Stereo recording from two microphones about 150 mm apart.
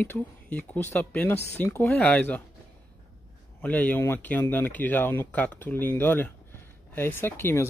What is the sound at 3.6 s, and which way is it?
Speech, 10° left (ahead or behind).